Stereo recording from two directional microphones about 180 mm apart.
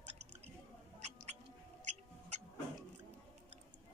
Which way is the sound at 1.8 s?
40° right (ahead or behind).